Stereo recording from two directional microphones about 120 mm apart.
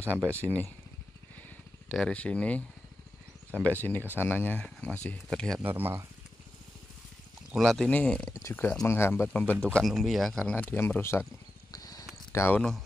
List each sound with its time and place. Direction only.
0.4 s speech: 15° left (ahead or behind)
1.9 s speech: 10° left (ahead or behind)
3.6 s speech: 15° left (ahead or behind)
5.6 s speech: 15° right (ahead or behind)
7.5 s speech: centre (ahead or behind)
9.8 s speech: centre (ahead or behind); by 11.2 s 20° left (ahead or behind)
11.7 s a sound: 30° left (ahead or behind)
12.3 s speech: 20° left (ahead or behind)